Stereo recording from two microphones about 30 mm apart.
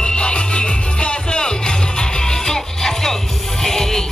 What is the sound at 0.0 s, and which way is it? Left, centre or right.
Music, left.